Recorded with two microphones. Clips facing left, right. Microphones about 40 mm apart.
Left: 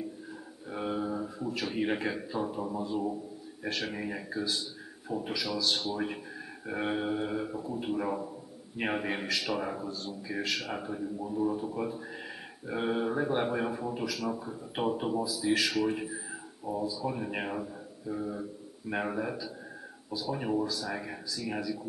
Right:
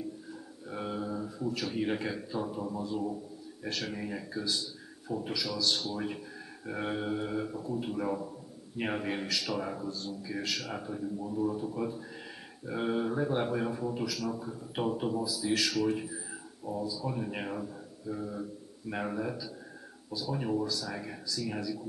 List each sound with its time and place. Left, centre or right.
0.7 s a man's voice: centre